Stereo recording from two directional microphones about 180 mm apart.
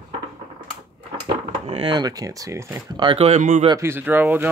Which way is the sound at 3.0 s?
30° right (ahead or behind).